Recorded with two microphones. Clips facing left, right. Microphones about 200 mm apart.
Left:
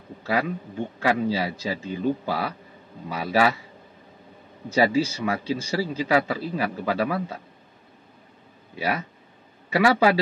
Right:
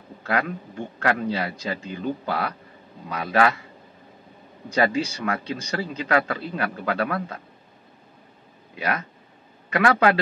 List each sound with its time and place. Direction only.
0.2 s a man's voice: 5° left (ahead or behind)
4.6 s a man's voice: 5° left (ahead or behind)
9.7 s a man's voice: 5° left (ahead or behind)